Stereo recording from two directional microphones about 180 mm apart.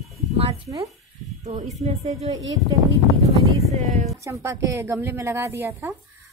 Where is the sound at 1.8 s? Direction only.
40° right (ahead or behind).